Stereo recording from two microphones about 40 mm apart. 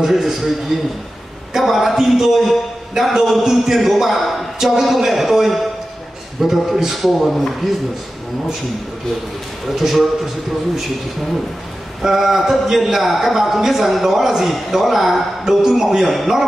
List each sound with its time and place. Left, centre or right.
0.0 s a man's voice: centre
9.7 s speech: centre
12.0 s a man's voice: centre